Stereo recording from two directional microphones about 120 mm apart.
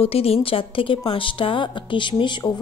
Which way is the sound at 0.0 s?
55° left (ahead or behind).